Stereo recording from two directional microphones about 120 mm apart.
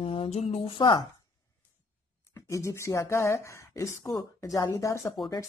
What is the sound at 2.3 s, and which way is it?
Speech, 25° left (ahead or behind).